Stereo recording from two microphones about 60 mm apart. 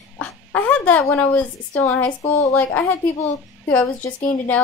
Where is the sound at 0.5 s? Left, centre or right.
Left.